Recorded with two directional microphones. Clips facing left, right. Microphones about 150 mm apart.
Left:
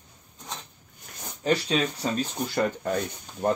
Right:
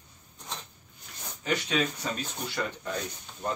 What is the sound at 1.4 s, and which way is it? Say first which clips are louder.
Speech: left 4 dB; 35° left (ahead or behind).